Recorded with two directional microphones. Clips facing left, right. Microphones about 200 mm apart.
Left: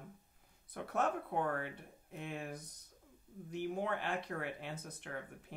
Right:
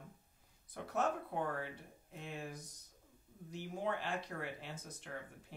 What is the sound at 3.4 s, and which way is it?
Speech, 60° left (ahead or behind).